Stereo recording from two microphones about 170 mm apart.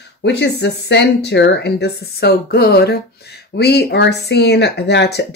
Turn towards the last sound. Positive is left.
turn(degrees=85)